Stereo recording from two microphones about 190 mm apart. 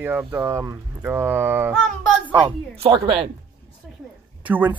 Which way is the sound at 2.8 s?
30° right (ahead or behind).